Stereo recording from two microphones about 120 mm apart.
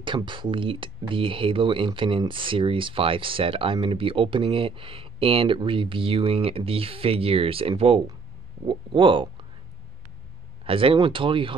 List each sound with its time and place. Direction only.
0.0 s speech: 40° right (ahead or behind)
10.6 s speech: 50° right (ahead or behind)